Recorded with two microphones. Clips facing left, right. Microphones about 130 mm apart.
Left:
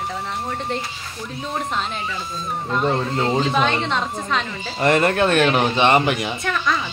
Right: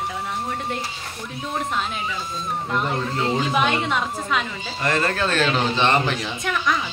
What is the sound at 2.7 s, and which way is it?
Speech, 25° left (ahead or behind).